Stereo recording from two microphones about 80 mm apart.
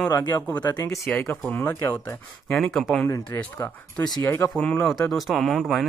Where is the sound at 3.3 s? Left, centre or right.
Left.